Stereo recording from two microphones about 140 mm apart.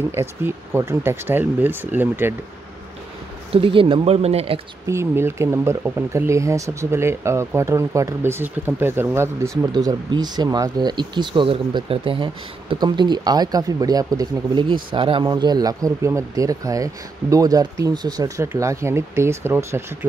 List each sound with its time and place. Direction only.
0.1 s speech: 15° right (ahead or behind)
3.5 s speech: 40° right (ahead or behind)
4.8 s speech: 20° right (ahead or behind)